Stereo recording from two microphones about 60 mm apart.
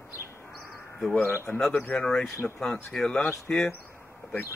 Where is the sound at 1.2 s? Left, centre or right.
Left.